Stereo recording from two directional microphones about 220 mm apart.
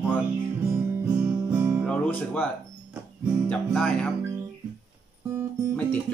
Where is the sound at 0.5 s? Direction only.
10° right (ahead or behind).